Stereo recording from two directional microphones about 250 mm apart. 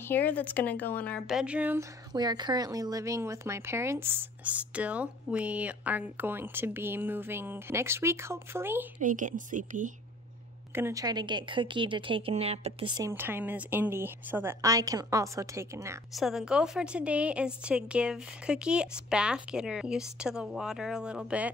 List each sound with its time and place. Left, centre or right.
0.1 s speech: centre
9.0 s speech: right
10.7 s a woman's voice: centre